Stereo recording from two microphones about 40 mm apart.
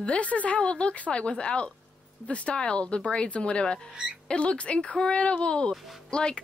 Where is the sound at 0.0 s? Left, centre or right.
Left.